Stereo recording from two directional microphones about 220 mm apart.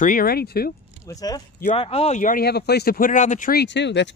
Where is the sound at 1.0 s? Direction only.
15° left (ahead or behind).